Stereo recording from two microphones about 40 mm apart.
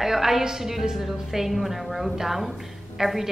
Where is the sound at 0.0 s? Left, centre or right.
Centre.